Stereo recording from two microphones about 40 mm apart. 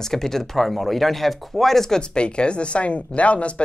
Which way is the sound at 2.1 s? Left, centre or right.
Left.